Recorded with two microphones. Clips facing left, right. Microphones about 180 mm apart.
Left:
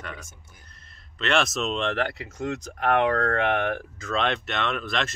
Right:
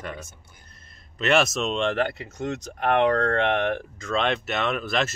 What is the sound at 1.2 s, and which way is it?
Speech, 5° right (ahead or behind).